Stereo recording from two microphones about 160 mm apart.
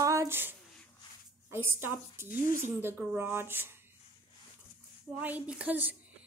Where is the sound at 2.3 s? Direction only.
55° left (ahead or behind).